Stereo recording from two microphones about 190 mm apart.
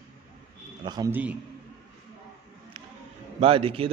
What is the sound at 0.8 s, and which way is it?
Speech, 20° right (ahead or behind).